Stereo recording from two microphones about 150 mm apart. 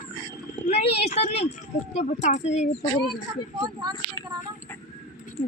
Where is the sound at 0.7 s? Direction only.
45° left (ahead or behind).